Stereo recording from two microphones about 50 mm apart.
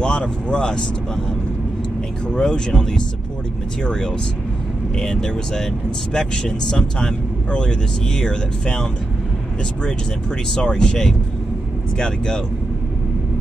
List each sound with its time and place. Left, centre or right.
0.0 s speech: centre
2.2 s speech: centre
10.5 s speech: centre